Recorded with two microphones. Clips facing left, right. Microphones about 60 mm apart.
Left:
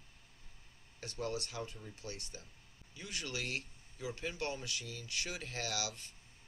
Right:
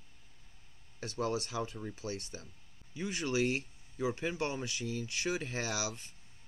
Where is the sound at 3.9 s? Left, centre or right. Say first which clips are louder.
Right 8 dB; right.